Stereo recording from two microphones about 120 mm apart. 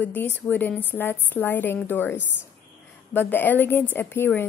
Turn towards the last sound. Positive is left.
turn(degrees=15)  # may be behind; listen again after turning